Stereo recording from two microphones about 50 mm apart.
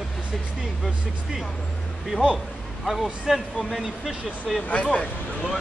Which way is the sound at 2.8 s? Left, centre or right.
Centre.